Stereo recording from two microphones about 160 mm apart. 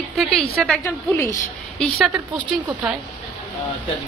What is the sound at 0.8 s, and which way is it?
Speech, 15° left (ahead or behind).